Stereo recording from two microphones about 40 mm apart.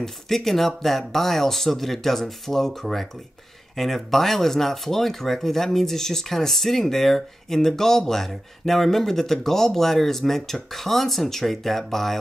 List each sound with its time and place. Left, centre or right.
0.0 s speech: centre